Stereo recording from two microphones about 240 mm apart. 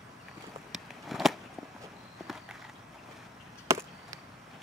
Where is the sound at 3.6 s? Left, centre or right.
Centre.